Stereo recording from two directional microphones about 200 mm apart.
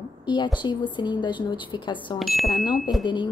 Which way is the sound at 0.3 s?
20° left (ahead or behind).